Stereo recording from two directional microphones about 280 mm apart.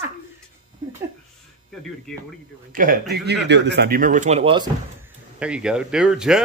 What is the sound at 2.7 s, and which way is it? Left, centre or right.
A man's voice, right.